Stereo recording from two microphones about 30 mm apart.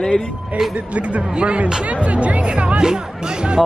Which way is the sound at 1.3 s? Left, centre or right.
Right.